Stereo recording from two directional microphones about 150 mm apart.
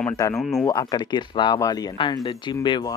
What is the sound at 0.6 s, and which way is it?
Speech, 30° left (ahead or behind).